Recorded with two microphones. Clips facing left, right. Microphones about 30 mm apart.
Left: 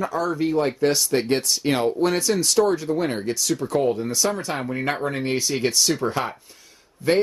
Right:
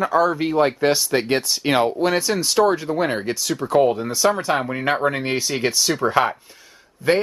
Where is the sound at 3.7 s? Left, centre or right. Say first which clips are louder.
Right 6 dB; right.